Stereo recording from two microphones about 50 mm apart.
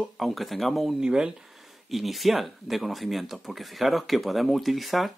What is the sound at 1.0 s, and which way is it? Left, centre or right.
Speech, centre.